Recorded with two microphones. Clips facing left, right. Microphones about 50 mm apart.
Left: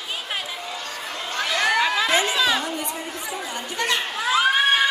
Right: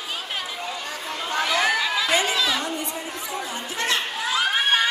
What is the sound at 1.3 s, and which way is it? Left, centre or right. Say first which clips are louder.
Chatter: even; centre.